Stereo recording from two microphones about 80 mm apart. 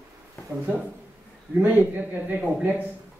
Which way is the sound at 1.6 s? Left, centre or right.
Centre.